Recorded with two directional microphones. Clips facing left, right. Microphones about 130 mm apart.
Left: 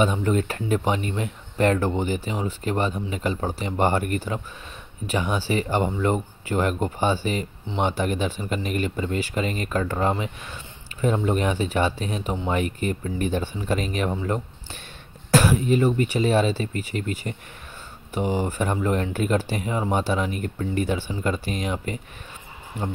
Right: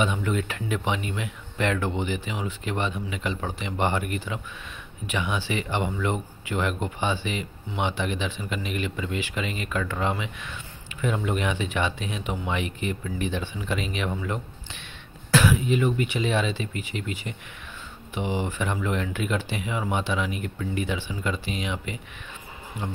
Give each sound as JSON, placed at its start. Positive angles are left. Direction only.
{"t": 0.0, "sound": "speech", "side_deg": 35}